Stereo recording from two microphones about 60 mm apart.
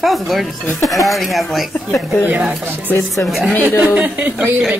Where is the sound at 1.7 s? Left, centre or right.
Left.